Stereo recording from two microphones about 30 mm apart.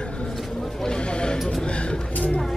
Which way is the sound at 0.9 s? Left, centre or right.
Left.